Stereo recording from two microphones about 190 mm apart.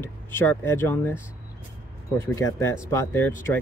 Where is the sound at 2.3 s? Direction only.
15° left (ahead or behind).